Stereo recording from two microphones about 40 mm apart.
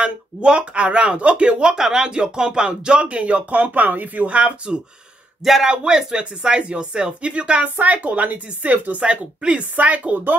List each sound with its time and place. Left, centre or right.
0.0 s speech: right
5.4 s speech: centre
5.7 s speech: centre
7.6 s speech: right
9.0 s speech: right